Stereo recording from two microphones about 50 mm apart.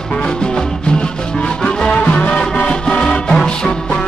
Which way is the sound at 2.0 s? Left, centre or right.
Left.